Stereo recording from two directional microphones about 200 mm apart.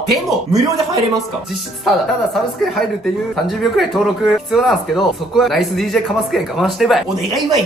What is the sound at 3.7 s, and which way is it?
Speech, centre (ahead or behind).